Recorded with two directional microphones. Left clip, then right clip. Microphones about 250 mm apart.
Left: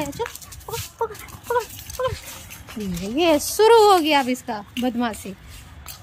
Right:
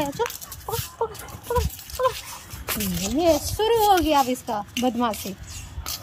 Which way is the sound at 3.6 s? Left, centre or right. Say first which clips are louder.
Left 6 dB; centre.